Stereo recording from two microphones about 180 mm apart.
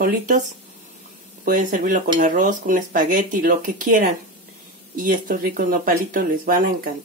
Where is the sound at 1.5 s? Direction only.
45° right (ahead or behind).